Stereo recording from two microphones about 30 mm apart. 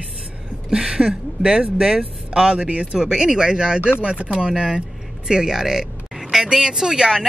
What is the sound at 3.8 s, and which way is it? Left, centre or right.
Speech, right.